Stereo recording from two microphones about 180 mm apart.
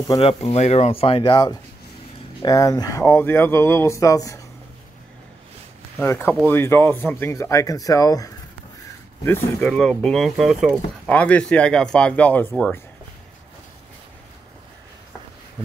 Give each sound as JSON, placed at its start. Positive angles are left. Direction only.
{"t": 0.1, "sound": "speech", "side_deg": 30}
{"t": 5.9, "sound": "speech", "side_deg": 10}
{"t": 11.1, "sound": "speech", "side_deg": 10}